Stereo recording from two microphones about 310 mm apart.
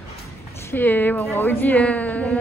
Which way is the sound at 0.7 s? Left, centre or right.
Centre.